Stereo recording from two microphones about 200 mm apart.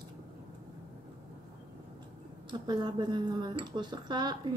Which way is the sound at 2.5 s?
20° right (ahead or behind).